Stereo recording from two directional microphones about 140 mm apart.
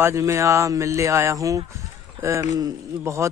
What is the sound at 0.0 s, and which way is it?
Speech, 20° right (ahead or behind).